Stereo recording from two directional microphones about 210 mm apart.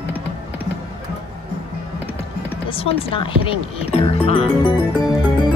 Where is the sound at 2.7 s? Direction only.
25° left (ahead or behind).